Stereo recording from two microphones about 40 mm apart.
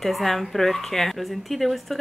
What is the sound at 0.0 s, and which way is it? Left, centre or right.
Speech, centre.